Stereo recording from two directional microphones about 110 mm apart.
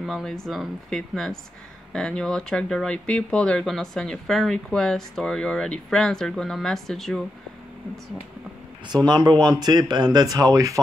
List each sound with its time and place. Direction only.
0.0 s speech: centre (ahead or behind)
8.8 s speech: 40° right (ahead or behind)